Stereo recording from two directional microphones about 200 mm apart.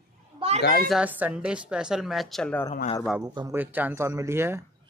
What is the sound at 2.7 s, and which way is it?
Speech, 35° left (ahead or behind).